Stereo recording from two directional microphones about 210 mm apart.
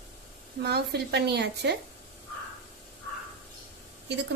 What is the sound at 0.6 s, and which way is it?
A woman's voice, 50° right (ahead or behind).